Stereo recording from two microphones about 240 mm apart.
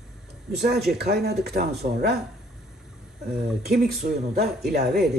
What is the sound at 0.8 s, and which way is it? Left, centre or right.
Speech, right.